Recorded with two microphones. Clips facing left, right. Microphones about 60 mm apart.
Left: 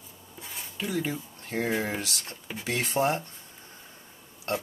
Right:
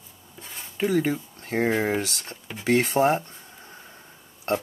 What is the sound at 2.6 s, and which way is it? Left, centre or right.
Speech, right.